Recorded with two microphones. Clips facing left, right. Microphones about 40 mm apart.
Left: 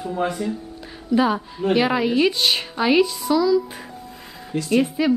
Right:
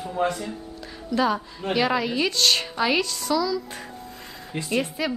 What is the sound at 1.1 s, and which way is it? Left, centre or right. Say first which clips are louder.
A woman's voice: left 4 dB; centre.